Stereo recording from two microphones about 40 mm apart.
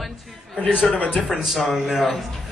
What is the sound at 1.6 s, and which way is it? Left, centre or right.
Speech, centre.